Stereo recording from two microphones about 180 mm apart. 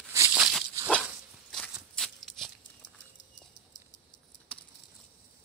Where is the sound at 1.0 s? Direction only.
Centre (ahead or behind).